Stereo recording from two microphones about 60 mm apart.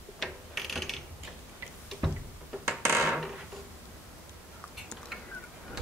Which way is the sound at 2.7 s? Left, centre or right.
Right.